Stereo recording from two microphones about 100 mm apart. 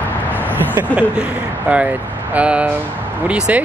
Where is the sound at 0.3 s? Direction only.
20° right (ahead or behind).